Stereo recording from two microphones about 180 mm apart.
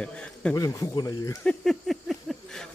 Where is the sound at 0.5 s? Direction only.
20° left (ahead or behind).